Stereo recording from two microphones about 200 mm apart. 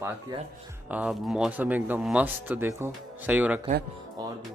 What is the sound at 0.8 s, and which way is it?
Speech, 5° right (ahead or behind).